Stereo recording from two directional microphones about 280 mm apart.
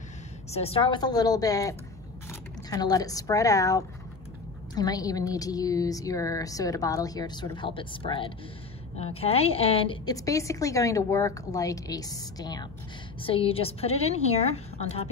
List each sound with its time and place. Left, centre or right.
0.5 s a woman's voice: left